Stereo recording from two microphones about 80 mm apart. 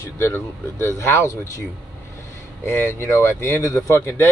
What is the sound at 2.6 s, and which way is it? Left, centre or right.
Speech, left.